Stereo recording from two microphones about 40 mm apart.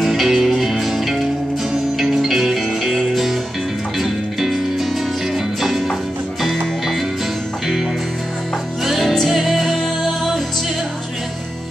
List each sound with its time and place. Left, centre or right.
0.0 s music: centre
8.8 s music: centre